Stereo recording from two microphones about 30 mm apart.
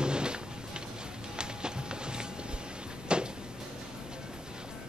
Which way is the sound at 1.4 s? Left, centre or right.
Right.